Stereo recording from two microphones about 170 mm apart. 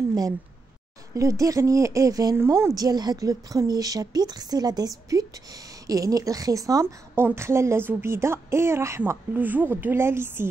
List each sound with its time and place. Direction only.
1.1 s speech: 20° right (ahead or behind)